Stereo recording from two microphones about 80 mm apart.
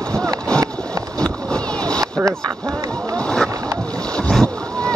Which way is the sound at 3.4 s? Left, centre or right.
Right.